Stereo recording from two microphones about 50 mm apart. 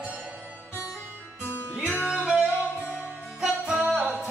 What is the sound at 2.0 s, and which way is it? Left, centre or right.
Music, centre.